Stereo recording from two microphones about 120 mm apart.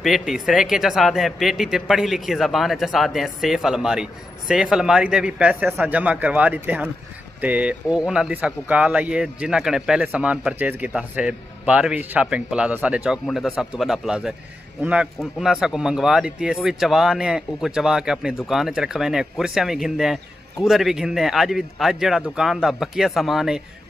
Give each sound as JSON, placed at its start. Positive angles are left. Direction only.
{"t": 0.0, "sound": "a man's voice", "side_deg": 0}